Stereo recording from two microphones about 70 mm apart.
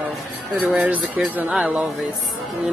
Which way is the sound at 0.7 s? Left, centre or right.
Right.